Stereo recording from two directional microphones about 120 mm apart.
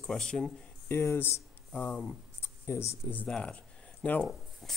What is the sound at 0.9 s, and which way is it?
Speech, 20° left (ahead or behind).